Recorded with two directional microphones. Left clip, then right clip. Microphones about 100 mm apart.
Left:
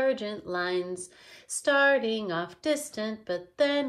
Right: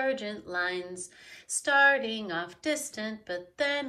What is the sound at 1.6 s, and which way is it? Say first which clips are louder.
A woman's voice: even; 50° left (ahead or behind).